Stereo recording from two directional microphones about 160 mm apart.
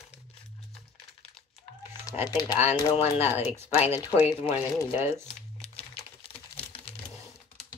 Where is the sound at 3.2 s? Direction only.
15° right (ahead or behind).